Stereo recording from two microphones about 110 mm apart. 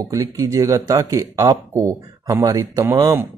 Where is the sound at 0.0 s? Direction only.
30° right (ahead or behind).